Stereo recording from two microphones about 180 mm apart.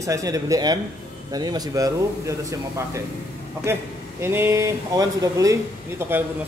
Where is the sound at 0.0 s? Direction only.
20° right (ahead or behind).